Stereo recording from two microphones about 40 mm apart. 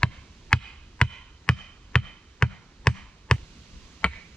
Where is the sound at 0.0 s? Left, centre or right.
Left.